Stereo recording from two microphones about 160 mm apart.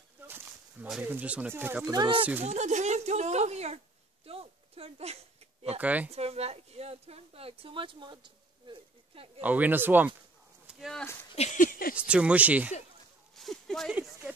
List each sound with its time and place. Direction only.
0.3 s speech: 5° right (ahead or behind)
2.0 s speech: 30° right (ahead or behind)
2.4 s a child's voice: 45° right (ahead or behind)
5.8 s speech: 10° right (ahead or behind)
6.1 s speech: 40° right (ahead or behind)
9.4 s speech: 10° right (ahead or behind)
10.7 s speech: centre (ahead or behind)
11.3 s a sound: 50° left (ahead or behind)
11.9 s speech: 5° right (ahead or behind)
13.4 s a sound: centre (ahead or behind)